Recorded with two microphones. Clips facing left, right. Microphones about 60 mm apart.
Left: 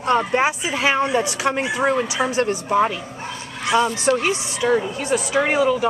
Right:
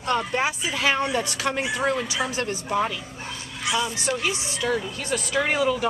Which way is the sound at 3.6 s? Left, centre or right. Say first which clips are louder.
Left 8 dB; left.